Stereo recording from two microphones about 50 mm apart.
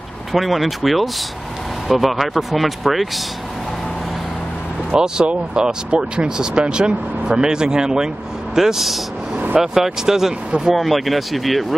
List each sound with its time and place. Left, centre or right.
0.3 s speech: centre
4.9 s speech: centre